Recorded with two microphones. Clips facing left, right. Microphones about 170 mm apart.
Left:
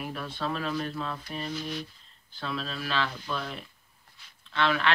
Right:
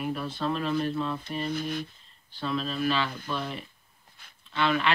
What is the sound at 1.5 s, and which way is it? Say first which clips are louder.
Speech: right 3 dB; 55° right (ahead or behind).